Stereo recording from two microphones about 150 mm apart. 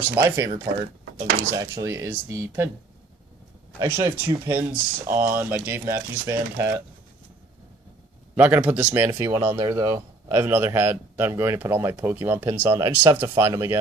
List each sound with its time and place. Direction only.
0.0 s speech: 15° right (ahead or behind)
1.5 s speech: 20° right (ahead or behind)
3.8 s speech: 20° right (ahead or behind)
8.4 s speech: 10° right (ahead or behind)
9.1 s speech: 20° right (ahead or behind)